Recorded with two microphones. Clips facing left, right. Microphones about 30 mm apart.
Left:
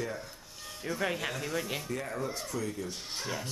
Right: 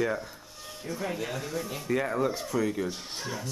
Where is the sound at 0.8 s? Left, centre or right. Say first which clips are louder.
Left 1 dB; left.